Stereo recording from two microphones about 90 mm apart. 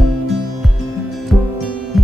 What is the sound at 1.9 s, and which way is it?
Music, centre (ahead or behind).